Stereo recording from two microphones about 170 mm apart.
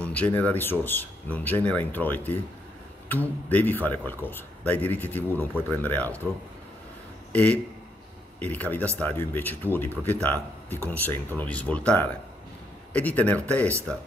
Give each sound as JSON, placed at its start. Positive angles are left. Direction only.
{"t": 0.0, "sound": "speech", "side_deg": 10}
{"t": 7.3, "sound": "speech", "side_deg": 10}